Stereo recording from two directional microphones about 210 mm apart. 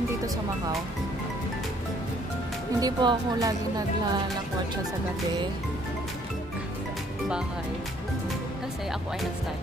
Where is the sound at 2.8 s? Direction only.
20° right (ahead or behind).